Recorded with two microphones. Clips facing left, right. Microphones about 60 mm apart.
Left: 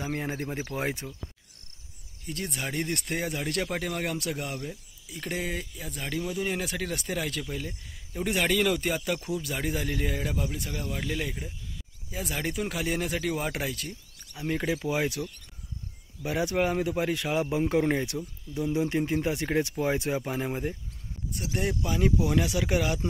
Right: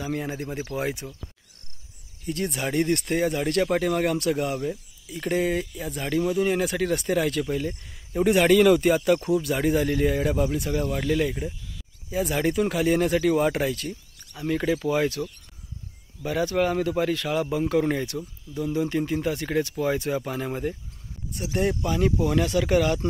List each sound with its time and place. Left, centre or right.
0.0 s speech: left
2.2 s speech: centre
16.3 s a man's voice: centre
21.5 s speech: centre